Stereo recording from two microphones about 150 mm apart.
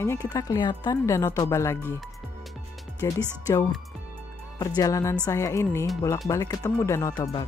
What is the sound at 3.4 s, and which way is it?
Speech, 15° left (ahead or behind).